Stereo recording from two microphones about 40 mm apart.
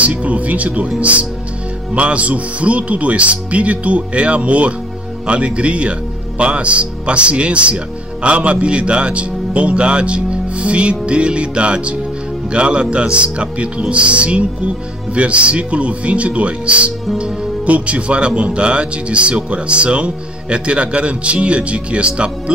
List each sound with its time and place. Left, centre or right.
0.0 s speech: right
2.0 s a man's voice: right